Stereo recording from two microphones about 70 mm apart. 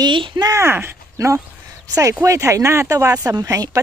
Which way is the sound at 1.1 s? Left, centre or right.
Right.